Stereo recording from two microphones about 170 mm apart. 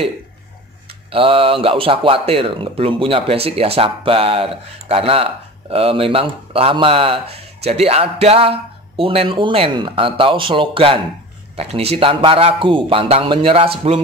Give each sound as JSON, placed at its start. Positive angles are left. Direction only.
{"t": 1.1, "sound": "speech", "side_deg": -30}